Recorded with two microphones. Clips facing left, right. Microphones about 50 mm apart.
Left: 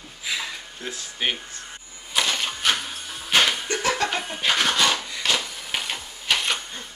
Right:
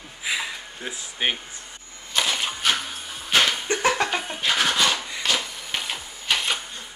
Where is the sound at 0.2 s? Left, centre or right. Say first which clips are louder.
Right 2 dB; right.